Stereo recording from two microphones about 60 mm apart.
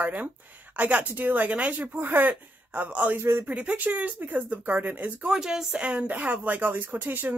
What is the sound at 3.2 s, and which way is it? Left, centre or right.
Speech, right.